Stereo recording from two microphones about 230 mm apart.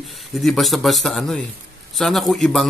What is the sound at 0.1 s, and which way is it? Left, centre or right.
A man's voice, centre.